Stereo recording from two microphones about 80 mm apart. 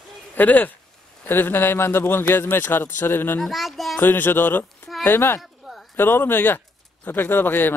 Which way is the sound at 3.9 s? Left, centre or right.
Left.